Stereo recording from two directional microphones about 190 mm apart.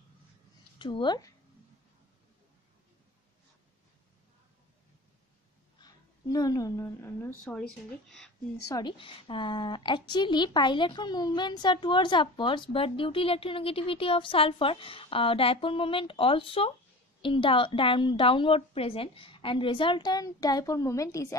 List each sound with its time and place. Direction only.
0.7 s a woman's voice: 25° left (ahead or behind)
5.8 s a woman's voice: 20° left (ahead or behind); by 7.6 s 5° left (ahead or behind)
8.6 s a woman's voice: 20° left (ahead or behind)